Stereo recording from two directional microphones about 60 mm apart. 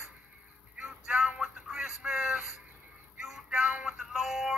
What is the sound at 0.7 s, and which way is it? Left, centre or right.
Music, centre.